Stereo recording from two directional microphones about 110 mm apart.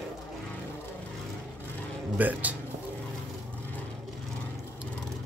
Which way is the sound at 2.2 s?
15° right (ahead or behind).